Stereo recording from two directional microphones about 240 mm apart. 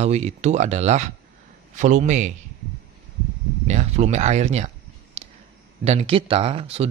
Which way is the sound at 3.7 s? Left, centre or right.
Right.